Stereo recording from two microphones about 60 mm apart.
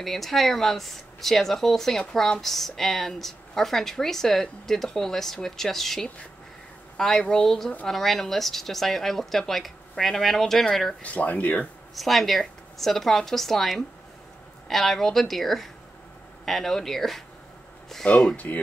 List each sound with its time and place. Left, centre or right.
0.0 s speech: centre
11.0 s speech: left
11.9 s speech: centre
18.0 s speech: centre